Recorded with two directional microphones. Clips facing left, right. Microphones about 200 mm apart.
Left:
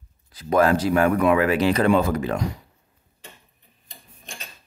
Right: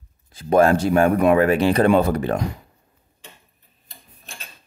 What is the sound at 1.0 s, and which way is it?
Speech, 40° right (ahead or behind).